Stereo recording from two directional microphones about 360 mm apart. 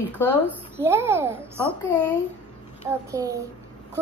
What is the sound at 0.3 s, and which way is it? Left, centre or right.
Speech, centre.